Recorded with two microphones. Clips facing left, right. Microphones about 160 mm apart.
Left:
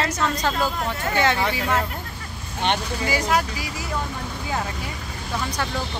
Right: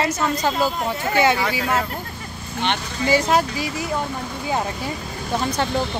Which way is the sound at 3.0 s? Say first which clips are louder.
Right 6 dB; 25° right (ahead or behind).